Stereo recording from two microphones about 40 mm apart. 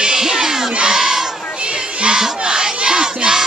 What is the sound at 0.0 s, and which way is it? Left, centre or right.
Crowd, centre.